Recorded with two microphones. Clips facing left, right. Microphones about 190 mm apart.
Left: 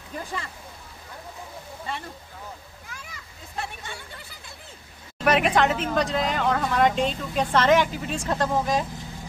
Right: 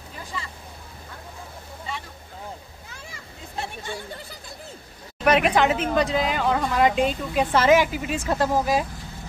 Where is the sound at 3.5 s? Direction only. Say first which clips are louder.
Right 3 dB; 30° right (ahead or behind).